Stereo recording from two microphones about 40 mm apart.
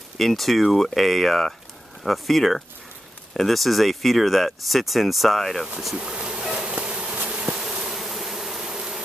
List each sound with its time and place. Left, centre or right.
0.2 s speech: centre
5.9 s a sound: right
6.7 s bee: right
7.6 s bee: centre